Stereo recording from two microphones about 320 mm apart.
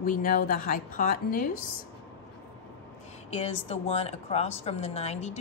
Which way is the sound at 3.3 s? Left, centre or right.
Centre.